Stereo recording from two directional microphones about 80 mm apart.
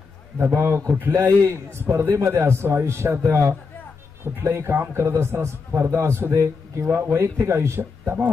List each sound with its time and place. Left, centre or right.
0.4 s a man's voice: right